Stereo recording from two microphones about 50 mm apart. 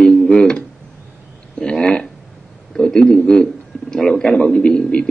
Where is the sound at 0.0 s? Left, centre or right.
Centre.